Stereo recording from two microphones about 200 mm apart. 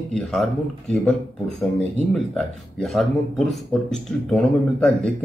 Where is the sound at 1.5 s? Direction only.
Centre (ahead or behind).